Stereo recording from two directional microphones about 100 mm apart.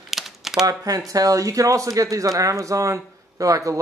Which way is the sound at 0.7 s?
35° right (ahead or behind).